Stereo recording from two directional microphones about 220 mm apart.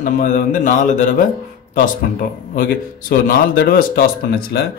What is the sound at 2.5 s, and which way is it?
Speech, 40° left (ahead or behind).